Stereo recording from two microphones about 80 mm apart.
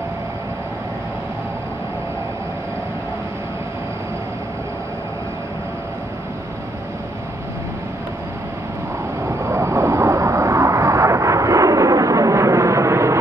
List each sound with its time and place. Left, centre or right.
9.4 s vehicle: right